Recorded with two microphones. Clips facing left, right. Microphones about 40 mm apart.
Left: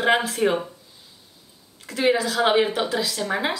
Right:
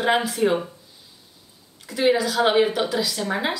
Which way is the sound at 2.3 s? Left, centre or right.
Centre.